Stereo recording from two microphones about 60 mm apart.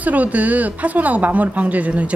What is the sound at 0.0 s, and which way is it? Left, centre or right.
Speech, right.